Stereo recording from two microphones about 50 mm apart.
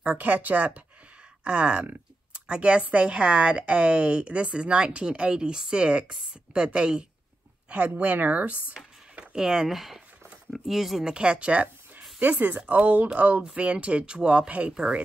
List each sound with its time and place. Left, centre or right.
0.0 s speech: right
9.1 s speech: centre
12.2 s speech: right; by 15.0 s centre